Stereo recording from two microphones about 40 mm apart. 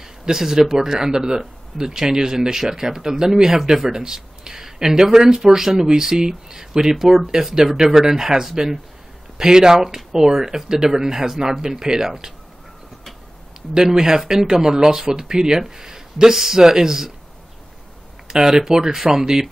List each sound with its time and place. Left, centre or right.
0.0 s speech: centre
13.7 s speech: centre
18.3 s speech: centre